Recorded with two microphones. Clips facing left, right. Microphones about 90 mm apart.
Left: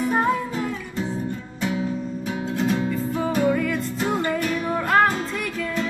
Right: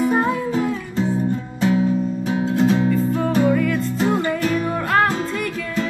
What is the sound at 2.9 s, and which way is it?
Music, centre (ahead or behind).